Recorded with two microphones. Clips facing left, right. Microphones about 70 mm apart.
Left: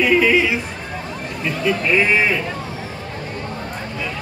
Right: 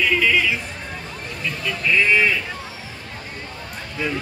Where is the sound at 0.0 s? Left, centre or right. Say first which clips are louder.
Left 4 dB; centre.